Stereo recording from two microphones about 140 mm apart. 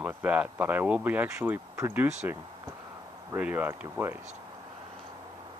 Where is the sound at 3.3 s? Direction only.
10° right (ahead or behind).